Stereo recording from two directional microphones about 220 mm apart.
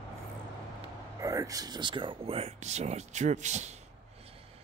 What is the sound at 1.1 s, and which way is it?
Speech, 15° right (ahead or behind).